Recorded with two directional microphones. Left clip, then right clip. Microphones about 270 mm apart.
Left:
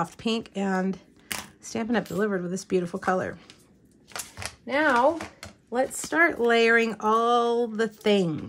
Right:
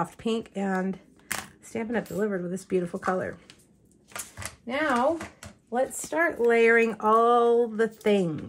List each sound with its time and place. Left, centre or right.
0.0 s speech: centre
4.6 s speech: left
6.4 s speech: centre